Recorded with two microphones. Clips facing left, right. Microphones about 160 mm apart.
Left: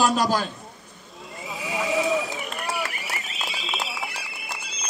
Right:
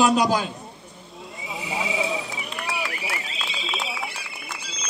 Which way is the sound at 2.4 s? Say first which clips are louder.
Left 1 dB; 45° left (ahead or behind).